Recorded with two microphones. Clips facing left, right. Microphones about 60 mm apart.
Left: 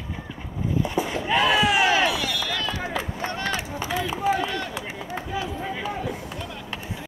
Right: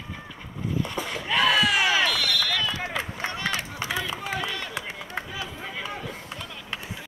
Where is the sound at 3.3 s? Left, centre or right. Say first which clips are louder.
Left 2 dB; left.